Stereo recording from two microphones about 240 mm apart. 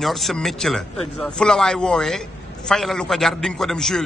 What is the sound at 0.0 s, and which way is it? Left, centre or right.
A man's voice, centre.